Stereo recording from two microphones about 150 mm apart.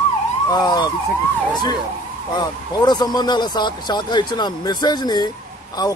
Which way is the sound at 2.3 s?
30° left (ahead or behind).